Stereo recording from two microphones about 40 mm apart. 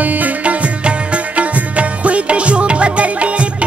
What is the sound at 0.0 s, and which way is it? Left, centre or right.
Music, right.